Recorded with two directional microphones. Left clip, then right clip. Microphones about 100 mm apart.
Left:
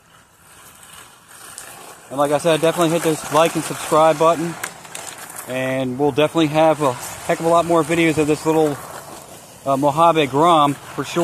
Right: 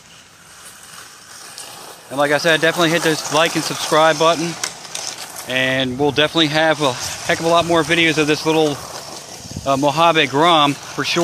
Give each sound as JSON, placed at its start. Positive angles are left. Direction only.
{"t": 2.1, "sound": "speech", "side_deg": -15}